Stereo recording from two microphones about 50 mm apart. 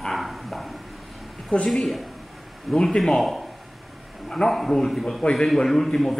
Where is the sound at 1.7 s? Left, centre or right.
Centre.